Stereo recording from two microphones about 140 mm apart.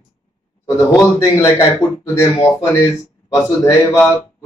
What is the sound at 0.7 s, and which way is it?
Speech, 20° left (ahead or behind).